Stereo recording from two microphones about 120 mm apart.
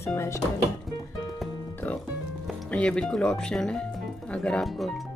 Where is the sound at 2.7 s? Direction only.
10° left (ahead or behind).